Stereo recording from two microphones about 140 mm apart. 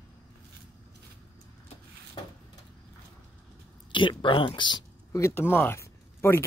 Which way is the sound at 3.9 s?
35° left (ahead or behind).